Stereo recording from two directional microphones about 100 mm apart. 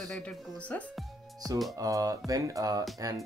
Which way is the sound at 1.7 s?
35° right (ahead or behind).